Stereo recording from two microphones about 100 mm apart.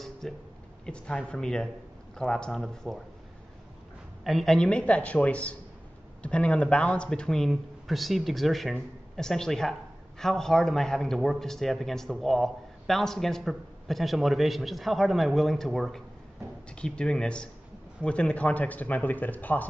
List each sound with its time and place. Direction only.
0.2 s speech: 5° left (ahead or behind)
4.2 s speech: centre (ahead or behind)
4.6 s speech: 10° left (ahead or behind)